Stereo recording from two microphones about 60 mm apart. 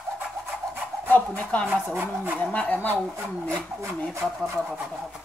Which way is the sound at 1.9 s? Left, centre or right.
Right.